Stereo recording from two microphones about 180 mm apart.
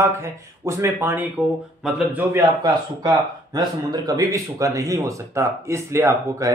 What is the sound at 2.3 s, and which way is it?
Speech, 20° right (ahead or behind).